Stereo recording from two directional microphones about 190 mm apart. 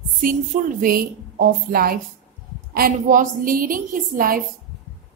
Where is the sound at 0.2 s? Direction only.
45° right (ahead or behind).